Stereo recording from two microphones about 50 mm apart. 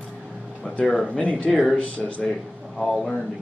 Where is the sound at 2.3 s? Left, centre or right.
Centre.